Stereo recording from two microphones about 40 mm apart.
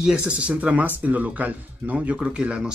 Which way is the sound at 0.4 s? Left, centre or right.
Right.